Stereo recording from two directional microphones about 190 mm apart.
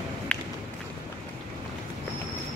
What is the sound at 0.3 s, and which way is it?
Run, 5° left (ahead or behind).